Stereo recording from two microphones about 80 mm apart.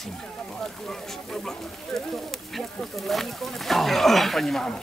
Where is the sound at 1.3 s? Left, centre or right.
Centre.